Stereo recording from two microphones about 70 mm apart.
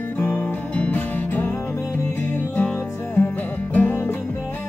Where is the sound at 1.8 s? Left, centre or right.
Left.